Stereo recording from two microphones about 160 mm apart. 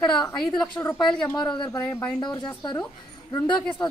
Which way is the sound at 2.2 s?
25° left (ahead or behind).